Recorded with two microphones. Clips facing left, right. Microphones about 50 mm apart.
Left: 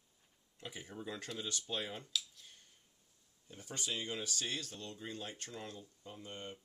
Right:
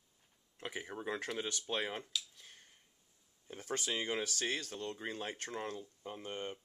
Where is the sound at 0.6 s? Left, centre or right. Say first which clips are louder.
Right 4 dB; right.